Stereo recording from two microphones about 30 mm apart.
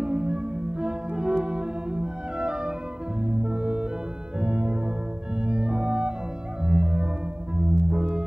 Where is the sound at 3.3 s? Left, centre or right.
Right.